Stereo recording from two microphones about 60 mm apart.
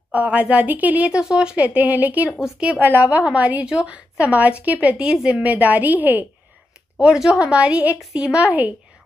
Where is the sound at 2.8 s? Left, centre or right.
Right.